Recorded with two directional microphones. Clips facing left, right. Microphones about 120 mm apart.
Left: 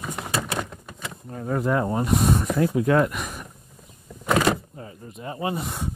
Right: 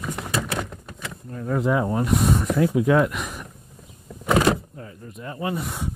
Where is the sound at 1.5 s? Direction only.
5° left (ahead or behind).